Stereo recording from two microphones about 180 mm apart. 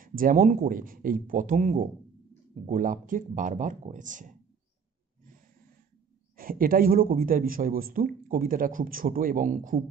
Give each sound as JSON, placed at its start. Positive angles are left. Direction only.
{"t": 0.0, "sound": "a man's voice", "side_deg": -50}
{"t": 6.3, "sound": "a man's voice", "side_deg": -50}